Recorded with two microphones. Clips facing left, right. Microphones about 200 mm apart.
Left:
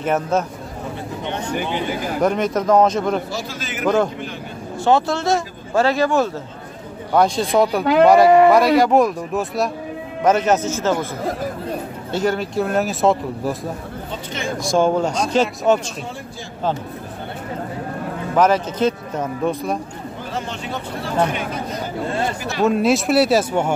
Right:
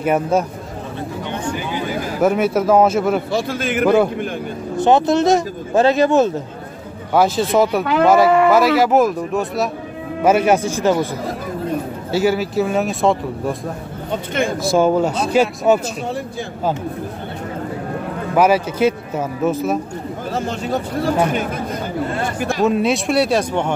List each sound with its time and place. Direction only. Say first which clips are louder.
0.0 s speech: right 3 dB; 10° right (ahead or behind)
2.2 s speech: right 3 dB; 5° right (ahead or behind)
3.3 s a man's voice: right 8 dB; 55° right (ahead or behind)
3.8 s speech: right 3 dB; 10° right (ahead or behind)
4.7 s speech: right 4 dB; 20° right (ahead or behind)
7.2 s speech: right 1 dB; 5° right (ahead or behind)
12.1 s speech: right 3 dB; 5° right (ahead or behind)
14.6 s speech: right 1 dB; 5° right (ahead or behind)
18.3 s speech: right 2 dB; 10° right (ahead or behind)
20.3 s speech: right 6 dB; 40° right (ahead or behind)
22.6 s speech: left 1 dB; centre (ahead or behind)